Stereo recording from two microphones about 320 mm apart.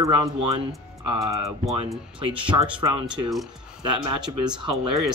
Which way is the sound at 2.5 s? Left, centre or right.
Centre.